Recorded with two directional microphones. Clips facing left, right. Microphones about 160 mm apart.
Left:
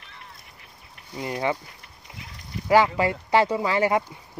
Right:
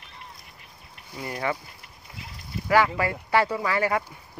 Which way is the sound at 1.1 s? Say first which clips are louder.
Left 3 dB; 20° left (ahead or behind).